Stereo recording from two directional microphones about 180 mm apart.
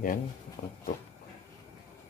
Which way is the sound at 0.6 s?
45° left (ahead or behind).